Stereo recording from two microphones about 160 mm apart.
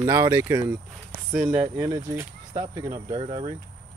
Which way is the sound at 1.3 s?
40° right (ahead or behind).